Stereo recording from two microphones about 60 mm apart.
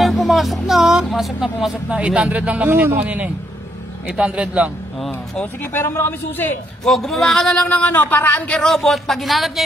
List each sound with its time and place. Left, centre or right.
0.0 s music: centre
1.0 s speech: centre
1.9 s speech: centre
2.7 s speech: right; by 4.6 s centre
5.7 s a man's voice: left
6.8 s speech: centre
7.7 s speech: left
8.5 s speech: centre